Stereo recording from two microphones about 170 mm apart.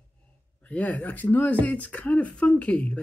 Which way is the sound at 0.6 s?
10° left (ahead or behind).